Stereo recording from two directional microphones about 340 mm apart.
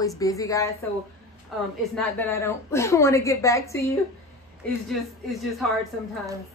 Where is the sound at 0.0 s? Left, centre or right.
Centre.